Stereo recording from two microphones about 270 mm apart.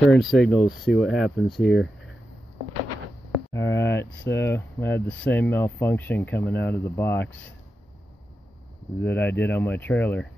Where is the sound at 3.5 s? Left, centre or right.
Centre.